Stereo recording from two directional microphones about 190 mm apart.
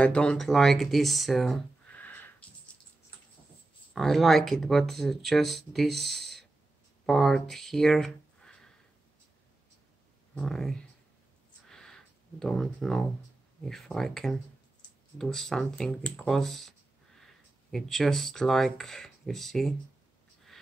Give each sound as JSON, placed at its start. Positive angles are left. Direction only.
{"t": 0.0, "sound": "speech", "side_deg": 5}
{"t": 3.9, "sound": "speech", "side_deg": 0}
{"t": 10.3, "sound": "speech", "side_deg": 0}
{"t": 11.7, "sound": "a sound", "side_deg": 5}
{"t": 13.7, "sound": "speech", "side_deg": 0}